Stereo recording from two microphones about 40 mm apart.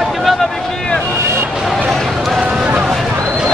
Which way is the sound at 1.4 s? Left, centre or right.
Centre.